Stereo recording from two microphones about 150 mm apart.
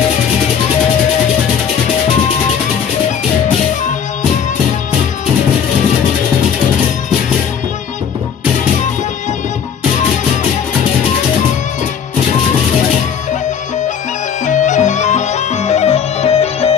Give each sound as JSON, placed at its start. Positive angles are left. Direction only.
{"t": 14.4, "sound": "music", "side_deg": 55}